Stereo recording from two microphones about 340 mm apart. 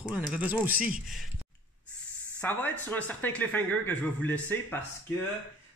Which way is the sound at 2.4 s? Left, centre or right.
Centre.